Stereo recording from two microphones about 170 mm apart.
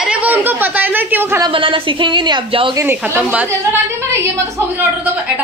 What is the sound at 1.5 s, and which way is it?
A woman's voice, 30° right (ahead or behind).